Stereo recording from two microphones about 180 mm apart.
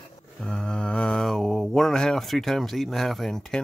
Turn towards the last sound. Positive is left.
turn(degrees=0)  # may be behind; listen again after turning